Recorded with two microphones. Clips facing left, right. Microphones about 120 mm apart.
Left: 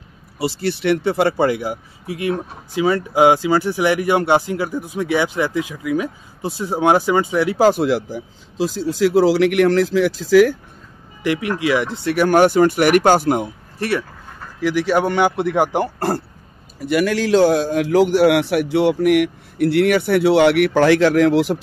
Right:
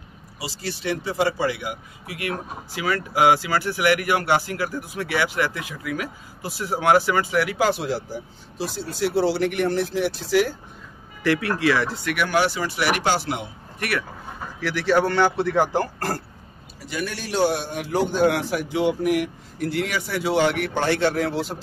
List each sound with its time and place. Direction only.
0.4 s speech: 60° left (ahead or behind)
1.6 s speech: 35° left (ahead or behind)
2.7 s speech: 25° left (ahead or behind)
7.5 s speech: 40° left (ahead or behind)
8.6 s speech: 90° left
11.2 s speech: 15° left (ahead or behind)
12.2 s speech: 45° left (ahead or behind)
13.7 s speech: 30° left (ahead or behind)
14.6 s speech: 15° left (ahead or behind)
16.8 s a man's voice: 80° left